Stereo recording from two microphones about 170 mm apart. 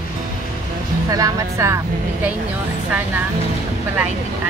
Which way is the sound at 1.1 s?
20° right (ahead or behind).